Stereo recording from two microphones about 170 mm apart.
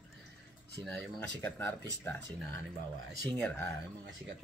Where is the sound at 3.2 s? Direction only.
5° left (ahead or behind).